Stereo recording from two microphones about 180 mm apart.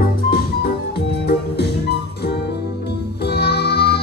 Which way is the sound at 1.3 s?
65° left (ahead or behind).